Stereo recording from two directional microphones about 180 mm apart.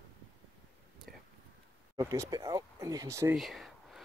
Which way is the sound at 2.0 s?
20° right (ahead or behind).